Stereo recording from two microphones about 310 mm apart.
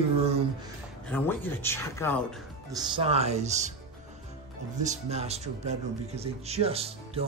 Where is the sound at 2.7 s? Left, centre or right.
Centre.